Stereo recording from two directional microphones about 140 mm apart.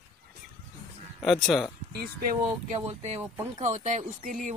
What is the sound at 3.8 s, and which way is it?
Speech, 60° right (ahead or behind).